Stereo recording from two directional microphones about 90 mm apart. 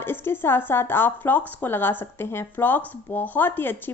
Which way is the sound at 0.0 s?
25° left (ahead or behind).